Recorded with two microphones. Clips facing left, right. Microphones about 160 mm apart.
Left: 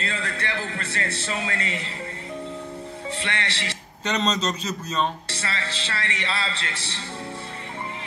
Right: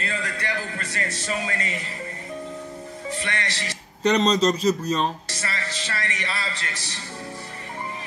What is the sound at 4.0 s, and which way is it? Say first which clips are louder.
Speech: right 6 dB; 35° right (ahead or behind).